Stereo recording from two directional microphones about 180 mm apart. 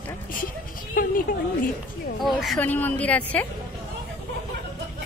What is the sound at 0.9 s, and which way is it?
A woman's voice, 50° left (ahead or behind).